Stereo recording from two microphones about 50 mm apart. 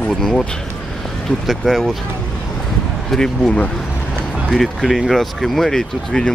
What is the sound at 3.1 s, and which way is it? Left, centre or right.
Speech, centre.